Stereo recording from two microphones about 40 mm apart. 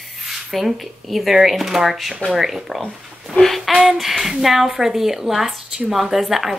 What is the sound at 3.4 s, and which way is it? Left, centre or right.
A woman's voice, centre.